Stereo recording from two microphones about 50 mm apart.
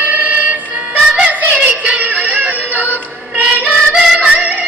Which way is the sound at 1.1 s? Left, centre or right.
Right.